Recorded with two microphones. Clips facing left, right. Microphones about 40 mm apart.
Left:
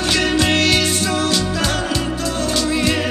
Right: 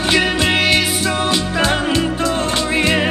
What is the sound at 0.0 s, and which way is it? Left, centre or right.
Music, centre.